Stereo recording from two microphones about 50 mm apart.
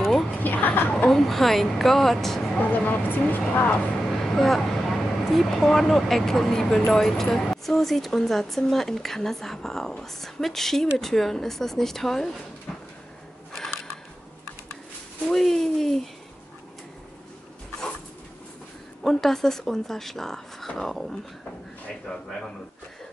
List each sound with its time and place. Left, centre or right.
0.4 s a sound: left
1.1 s a woman's voice: centre
2.7 s speech: left
4.1 s speech: centre
15.2 s a sound: centre
19.0 s speech: centre